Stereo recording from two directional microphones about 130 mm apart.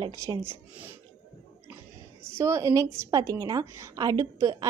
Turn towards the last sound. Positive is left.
turn(degrees=-30)  # may be behind; listen again after turning